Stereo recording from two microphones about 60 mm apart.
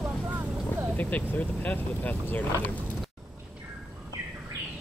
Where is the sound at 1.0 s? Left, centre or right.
Left.